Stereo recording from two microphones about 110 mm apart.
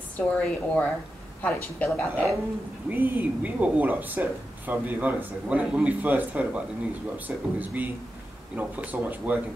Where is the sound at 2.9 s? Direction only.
20° right (ahead or behind).